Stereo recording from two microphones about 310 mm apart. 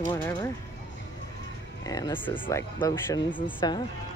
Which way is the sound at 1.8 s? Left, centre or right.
Centre.